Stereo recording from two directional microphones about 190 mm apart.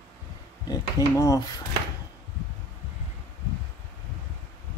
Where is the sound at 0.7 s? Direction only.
15° left (ahead or behind).